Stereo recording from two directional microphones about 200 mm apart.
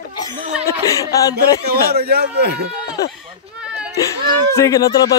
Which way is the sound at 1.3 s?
50° right (ahead or behind).